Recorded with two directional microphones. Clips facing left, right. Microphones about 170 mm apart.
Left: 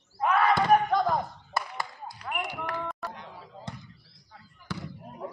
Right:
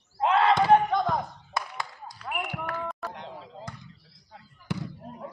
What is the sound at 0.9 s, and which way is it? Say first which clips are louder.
Clapping: left 1 dB; centre (ahead or behind).